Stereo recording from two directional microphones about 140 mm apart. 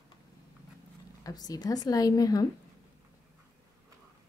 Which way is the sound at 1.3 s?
25° left (ahead or behind).